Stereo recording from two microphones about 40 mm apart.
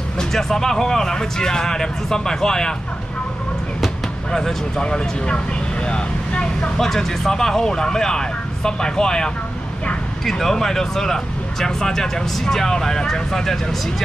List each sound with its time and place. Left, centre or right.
0.2 s speech: centre
4.3 s speech: centre
4.8 s speech: left
6.8 s speech: centre